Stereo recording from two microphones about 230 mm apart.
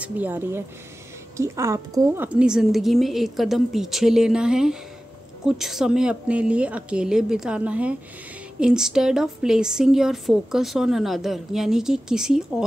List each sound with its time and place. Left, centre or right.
0.0 s a woman's voice: centre